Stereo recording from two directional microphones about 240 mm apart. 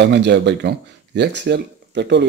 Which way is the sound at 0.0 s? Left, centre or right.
Right.